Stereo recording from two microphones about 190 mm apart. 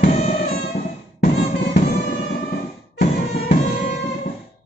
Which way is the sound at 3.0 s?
40° left (ahead or behind).